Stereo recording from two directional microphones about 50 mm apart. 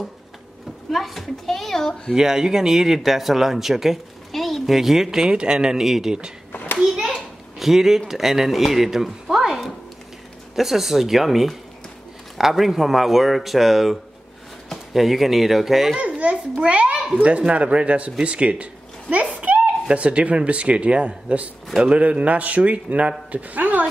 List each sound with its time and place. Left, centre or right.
0.9 s a sound: centre
2.1 s speech: centre
6.5 s hands: left
6.8 s speech: centre
16.0 s a sound: right
17.2 s speech: right
22.0 s speech: right